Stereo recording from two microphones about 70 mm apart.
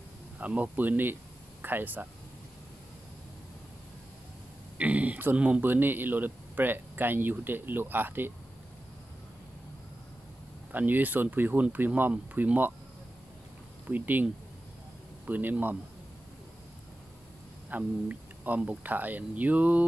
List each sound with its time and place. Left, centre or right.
0.4 s speech: right
4.7 s speech: right
10.7 s speech: right
13.8 s speech: right
15.2 s speech: right
17.6 s speech: right